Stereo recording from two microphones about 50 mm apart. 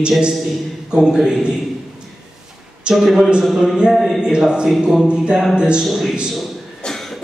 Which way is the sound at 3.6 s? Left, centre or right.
Centre.